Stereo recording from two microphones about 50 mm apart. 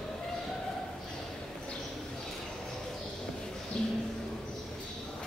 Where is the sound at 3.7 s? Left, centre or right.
Centre.